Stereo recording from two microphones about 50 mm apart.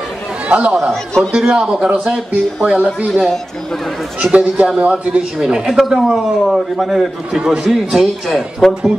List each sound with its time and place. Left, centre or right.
0.5 s speech: right
4.2 s a man's voice: centre
5.4 s a man's voice: centre